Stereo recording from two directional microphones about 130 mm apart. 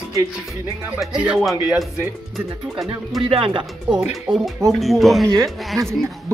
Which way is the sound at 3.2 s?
45° right (ahead or behind).